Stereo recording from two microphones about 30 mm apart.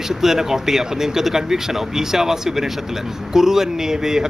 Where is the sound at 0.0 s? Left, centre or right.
Centre.